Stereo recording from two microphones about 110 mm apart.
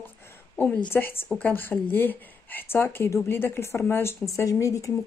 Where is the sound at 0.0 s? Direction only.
20° left (ahead or behind).